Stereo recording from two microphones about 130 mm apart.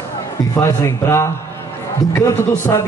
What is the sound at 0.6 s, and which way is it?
Speech, 25° left (ahead or behind).